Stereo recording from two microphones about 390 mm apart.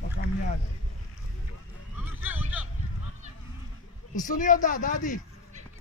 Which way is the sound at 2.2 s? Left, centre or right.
Centre.